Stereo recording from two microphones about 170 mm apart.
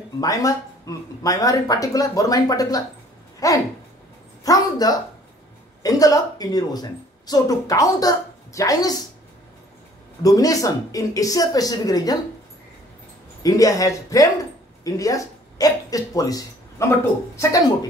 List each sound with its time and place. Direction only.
0.2 s a woman's voice: 20° left (ahead or behind)
10.2 s speech: 20° left (ahead or behind)
13.4 s speech: 20° left (ahead or behind)